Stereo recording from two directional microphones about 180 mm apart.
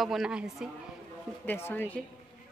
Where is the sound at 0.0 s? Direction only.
Centre (ahead or behind).